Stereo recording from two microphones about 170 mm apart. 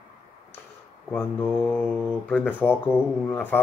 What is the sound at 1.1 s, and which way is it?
Speech, 10° left (ahead or behind).